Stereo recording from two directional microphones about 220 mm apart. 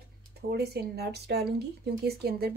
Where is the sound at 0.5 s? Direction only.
45° right (ahead or behind).